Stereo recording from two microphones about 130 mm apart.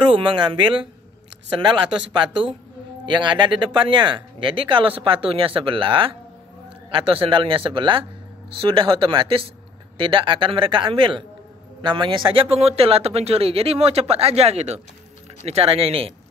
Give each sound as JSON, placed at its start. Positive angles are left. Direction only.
{"t": 0.1, "sound": "speech", "side_deg": -40}